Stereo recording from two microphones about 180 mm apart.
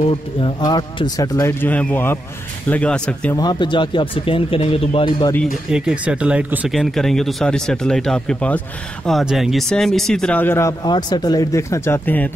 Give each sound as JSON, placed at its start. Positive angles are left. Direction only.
{"t": 0.4, "sound": "speech", "side_deg": 25}
{"t": 3.3, "sound": "speech", "side_deg": 25}
{"t": 5.3, "sound": "speech", "side_deg": 0}
{"t": 10.8, "sound": "speech", "side_deg": 25}